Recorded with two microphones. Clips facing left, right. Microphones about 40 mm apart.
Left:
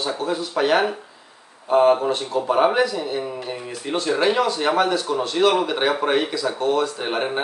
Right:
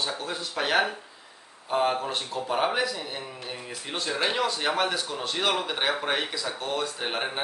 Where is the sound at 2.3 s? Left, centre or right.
Centre.